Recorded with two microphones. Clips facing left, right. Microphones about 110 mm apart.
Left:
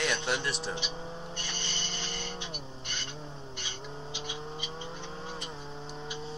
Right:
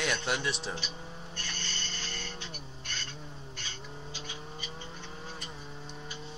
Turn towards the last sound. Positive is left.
turn(degrees=15)  # may be behind; listen again after turning